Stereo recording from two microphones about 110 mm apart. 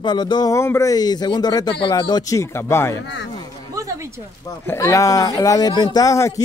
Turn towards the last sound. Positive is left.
turn(degrees=30)  # may be behind; listen again after turning